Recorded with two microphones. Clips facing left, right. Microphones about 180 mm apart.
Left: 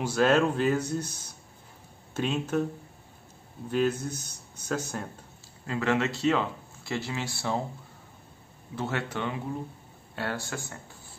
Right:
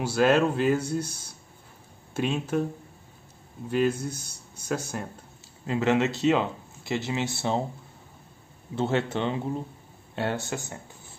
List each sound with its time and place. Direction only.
0.0 s speech: 10° right (ahead or behind)
3.7 s speech: 10° right (ahead or behind)
5.7 s speech: 20° right (ahead or behind)
8.7 s speech: 25° right (ahead or behind)